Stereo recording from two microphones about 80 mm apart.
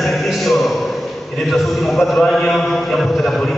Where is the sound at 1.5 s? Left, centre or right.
Centre.